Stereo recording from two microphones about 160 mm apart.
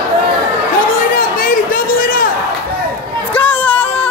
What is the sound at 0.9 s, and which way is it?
Chatter, 60° left (ahead or behind).